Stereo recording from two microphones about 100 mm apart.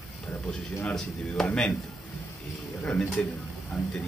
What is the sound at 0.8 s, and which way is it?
Speech, 5° left (ahead or behind).